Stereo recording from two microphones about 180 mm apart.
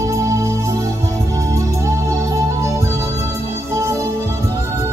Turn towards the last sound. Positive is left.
turn(degrees=-15)  # may be behind; listen again after turning